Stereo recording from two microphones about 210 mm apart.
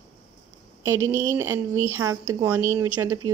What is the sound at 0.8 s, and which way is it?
Speech, 10° right (ahead or behind).